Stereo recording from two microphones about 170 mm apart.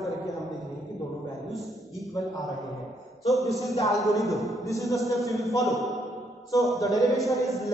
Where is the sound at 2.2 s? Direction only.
20° left (ahead or behind).